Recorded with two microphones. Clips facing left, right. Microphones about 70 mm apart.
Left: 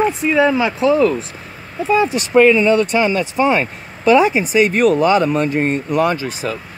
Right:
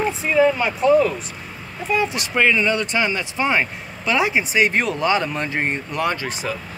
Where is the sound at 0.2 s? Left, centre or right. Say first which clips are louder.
Left 3 dB; left.